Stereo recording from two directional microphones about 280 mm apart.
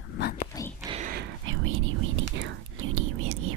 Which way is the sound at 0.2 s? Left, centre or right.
Left.